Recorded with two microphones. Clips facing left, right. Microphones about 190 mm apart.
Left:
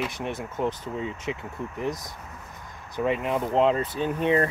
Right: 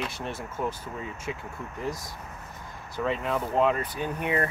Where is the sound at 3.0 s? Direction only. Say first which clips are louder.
Left 3 dB; 20° left (ahead or behind).